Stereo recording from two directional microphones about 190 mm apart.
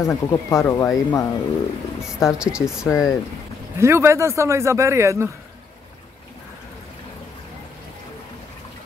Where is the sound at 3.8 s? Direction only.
15° right (ahead or behind).